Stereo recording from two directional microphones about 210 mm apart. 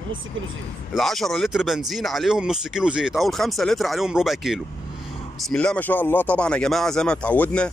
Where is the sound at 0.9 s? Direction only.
Centre (ahead or behind).